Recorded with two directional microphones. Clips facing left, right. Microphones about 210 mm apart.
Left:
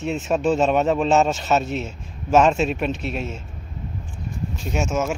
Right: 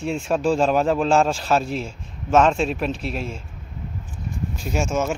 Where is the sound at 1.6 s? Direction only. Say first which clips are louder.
Even; 30° right (ahead or behind).